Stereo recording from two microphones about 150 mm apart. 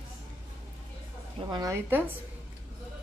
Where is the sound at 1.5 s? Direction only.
20° right (ahead or behind).